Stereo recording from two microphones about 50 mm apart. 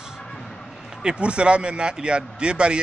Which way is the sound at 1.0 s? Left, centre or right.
Right.